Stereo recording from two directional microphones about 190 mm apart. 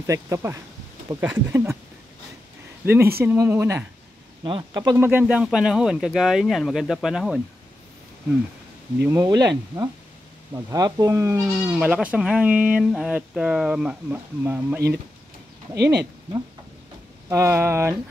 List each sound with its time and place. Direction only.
0.0 s speech: 15° right (ahead or behind)
2.8 s speech: 10° right (ahead or behind)
4.4 s speech: 25° right (ahead or behind)
5.2 s speech: 5° right (ahead or behind)
9.0 s speech: 15° right (ahead or behind)
15.7 s speech: 60° right (ahead or behind)
17.3 s speech: 15° right (ahead or behind)